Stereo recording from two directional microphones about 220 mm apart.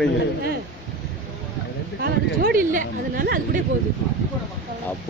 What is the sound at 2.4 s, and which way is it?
A woman's voice, 40° right (ahead or behind).